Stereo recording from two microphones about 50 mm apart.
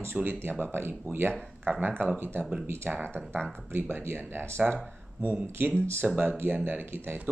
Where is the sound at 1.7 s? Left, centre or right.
Right.